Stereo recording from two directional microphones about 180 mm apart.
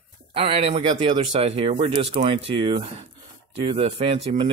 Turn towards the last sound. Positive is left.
turn(degrees=-35)  # may be behind; listen again after turning